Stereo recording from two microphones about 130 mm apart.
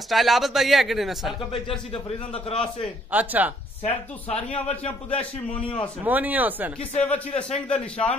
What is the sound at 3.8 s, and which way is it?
Speech, 55° left (ahead or behind).